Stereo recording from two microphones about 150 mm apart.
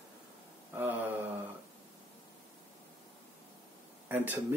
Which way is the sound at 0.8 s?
10° right (ahead or behind).